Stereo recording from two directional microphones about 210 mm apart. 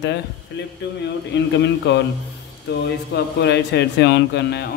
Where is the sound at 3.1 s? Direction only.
50° left (ahead or behind).